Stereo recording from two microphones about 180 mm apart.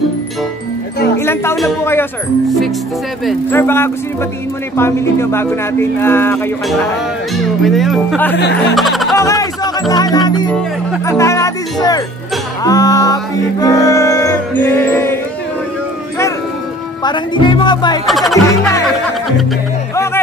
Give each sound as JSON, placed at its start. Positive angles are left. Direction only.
{"t": 1.2, "sound": "speech", "side_deg": 15}
{"t": 3.5, "sound": "speech", "side_deg": 15}
{"t": 7.6, "sound": "speech", "side_deg": 0}
{"t": 8.4, "sound": "speech", "side_deg": 70}
{"t": 8.7, "sound": "music", "side_deg": 0}
{"t": 9.1, "sound": "music", "side_deg": 15}
{"t": 11.1, "sound": "speech", "side_deg": 15}
{"t": 12.6, "sound": "music", "side_deg": 20}
{"t": 17.0, "sound": "speech", "side_deg": 25}
{"t": 18.0, "sound": "speech", "side_deg": 0}